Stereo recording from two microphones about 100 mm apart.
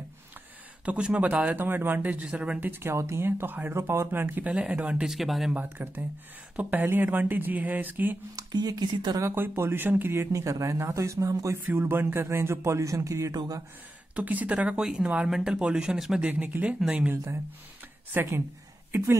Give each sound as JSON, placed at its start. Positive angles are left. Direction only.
{"t": 0.8, "sound": "speech", "side_deg": -10}
{"t": 5.5, "sound": "speech", "side_deg": -15}
{"t": 8.4, "sound": "speech", "side_deg": -40}
{"t": 9.2, "sound": "speech", "side_deg": -25}
{"t": 14.1, "sound": "speech", "side_deg": -15}
{"t": 17.1, "sound": "speech", "side_deg": -25}